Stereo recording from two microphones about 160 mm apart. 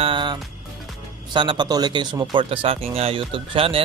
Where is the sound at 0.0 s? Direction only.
30° right (ahead or behind).